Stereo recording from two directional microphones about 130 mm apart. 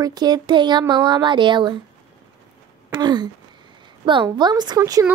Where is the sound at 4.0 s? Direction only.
40° right (ahead or behind).